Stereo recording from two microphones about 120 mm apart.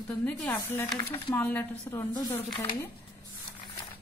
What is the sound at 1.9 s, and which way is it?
Speech, 30° left (ahead or behind).